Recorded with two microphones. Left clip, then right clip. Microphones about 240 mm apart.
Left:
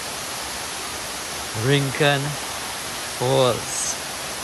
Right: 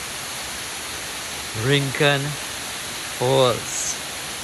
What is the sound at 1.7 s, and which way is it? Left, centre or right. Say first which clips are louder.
Speech: even; centre.